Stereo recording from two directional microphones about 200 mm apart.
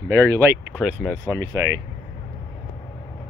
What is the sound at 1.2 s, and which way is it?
Speech, 15° right (ahead or behind).